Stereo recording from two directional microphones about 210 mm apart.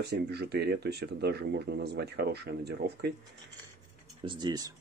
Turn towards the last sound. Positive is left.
turn(degrees=-20)  # may be behind; listen again after turning